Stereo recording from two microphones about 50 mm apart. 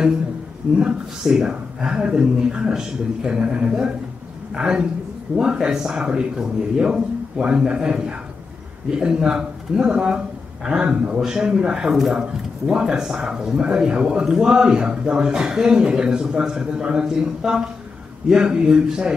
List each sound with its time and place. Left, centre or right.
0.7 s a man's voice: centre